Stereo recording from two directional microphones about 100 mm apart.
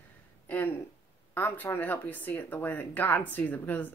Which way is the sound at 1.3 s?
20° left (ahead or behind).